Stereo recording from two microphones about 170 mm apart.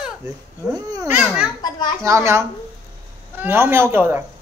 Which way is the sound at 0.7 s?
20° right (ahead or behind).